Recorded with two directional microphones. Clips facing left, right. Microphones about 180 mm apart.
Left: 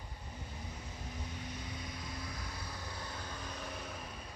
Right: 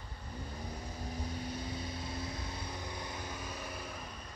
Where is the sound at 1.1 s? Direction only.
35° right (ahead or behind); by 4.2 s centre (ahead or behind).